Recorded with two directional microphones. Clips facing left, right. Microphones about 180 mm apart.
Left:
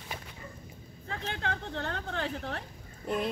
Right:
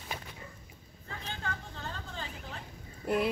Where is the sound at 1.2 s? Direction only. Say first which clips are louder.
Left 5 dB; 75° left (ahead or behind).